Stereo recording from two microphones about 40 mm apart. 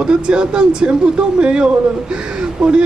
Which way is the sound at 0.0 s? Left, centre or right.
Right.